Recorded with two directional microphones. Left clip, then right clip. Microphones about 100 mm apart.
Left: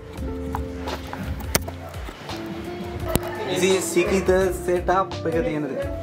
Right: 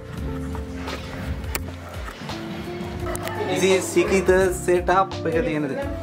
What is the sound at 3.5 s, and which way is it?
Speech, 5° left (ahead or behind).